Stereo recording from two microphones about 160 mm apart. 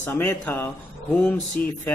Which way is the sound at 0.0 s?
10° left (ahead or behind).